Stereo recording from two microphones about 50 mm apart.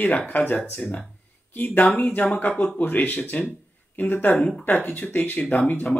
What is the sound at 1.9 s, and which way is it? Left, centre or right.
Speech, left.